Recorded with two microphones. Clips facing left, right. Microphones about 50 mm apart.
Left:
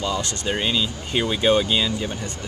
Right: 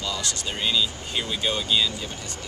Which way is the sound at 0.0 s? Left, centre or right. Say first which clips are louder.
Left 5 dB; left.